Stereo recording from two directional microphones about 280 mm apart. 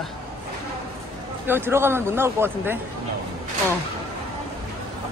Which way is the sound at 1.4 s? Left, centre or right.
Centre.